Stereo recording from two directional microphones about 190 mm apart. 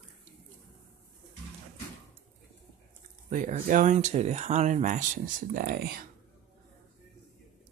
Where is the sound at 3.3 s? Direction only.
45° right (ahead or behind).